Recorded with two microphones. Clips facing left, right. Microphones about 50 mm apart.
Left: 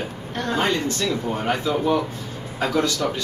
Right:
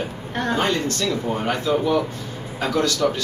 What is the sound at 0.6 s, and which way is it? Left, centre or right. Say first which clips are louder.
Speech: left 2 dB; centre.